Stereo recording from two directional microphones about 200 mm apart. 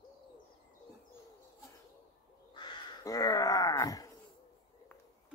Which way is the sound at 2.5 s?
20° left (ahead or behind).